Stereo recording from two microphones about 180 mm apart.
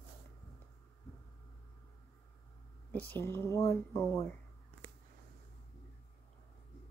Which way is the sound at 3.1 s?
15° left (ahead or behind).